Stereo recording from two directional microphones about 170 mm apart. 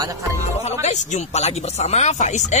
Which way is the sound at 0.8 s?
40° left (ahead or behind).